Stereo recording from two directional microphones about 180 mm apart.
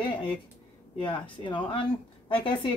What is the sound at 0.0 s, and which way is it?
Speech, 30° left (ahead or behind).